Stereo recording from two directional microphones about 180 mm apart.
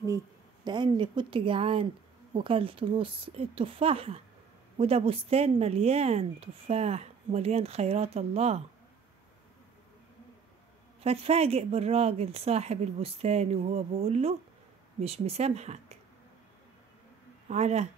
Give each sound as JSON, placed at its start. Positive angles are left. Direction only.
{"t": 0.7, "sound": "speech", "side_deg": -25}
{"t": 11.0, "sound": "speech", "side_deg": -35}
{"t": 17.5, "sound": "speech", "side_deg": -40}